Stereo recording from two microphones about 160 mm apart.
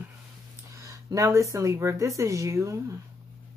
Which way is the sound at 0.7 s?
20° right (ahead or behind).